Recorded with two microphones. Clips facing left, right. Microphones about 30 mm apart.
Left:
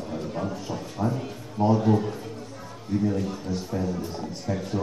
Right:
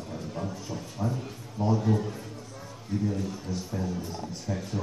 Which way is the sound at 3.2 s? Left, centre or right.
Left.